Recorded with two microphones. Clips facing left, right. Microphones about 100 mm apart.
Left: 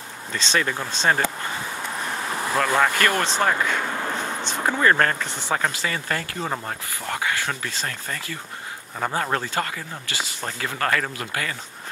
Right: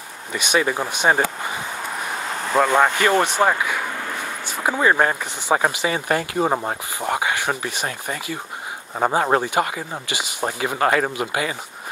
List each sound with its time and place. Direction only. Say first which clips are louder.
0.3 s speech: right 4 dB; 15° right (ahead or behind)